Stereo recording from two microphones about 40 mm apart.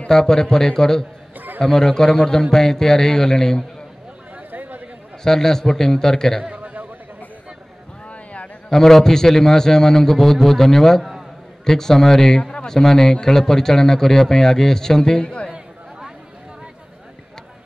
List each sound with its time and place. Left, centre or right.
0.1 s speech: centre
4.4 s chatter: right
5.2 s speech: centre
6.5 s a sound: right
8.1 s a sound: left
8.6 s speech: centre